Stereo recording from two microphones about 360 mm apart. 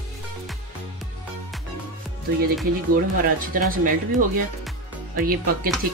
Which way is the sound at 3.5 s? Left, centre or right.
Right.